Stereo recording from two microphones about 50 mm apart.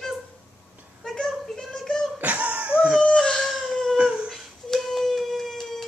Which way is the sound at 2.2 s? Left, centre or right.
Right.